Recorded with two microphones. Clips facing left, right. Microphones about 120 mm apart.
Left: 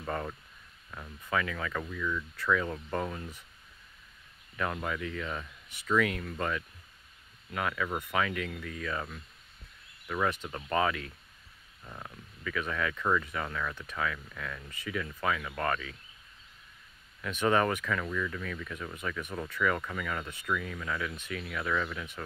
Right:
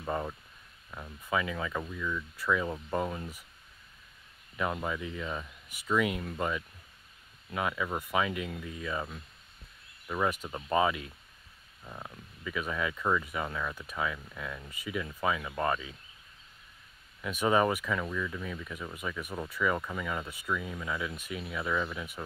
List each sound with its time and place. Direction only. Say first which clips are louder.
0.0 s speech: right 1 dB; 15° right (ahead or behind)
4.6 s speech: right 1 dB; 15° right (ahead or behind)
17.2 s speech: right 1 dB; 10° right (ahead or behind)